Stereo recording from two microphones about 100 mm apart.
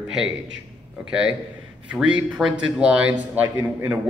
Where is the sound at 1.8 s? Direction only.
10° right (ahead or behind).